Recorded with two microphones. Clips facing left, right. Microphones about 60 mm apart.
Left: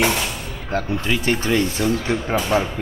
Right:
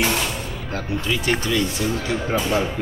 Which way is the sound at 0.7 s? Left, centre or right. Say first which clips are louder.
Left 3 dB; left.